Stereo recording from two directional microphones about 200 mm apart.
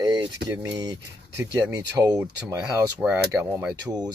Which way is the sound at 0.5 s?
20° right (ahead or behind).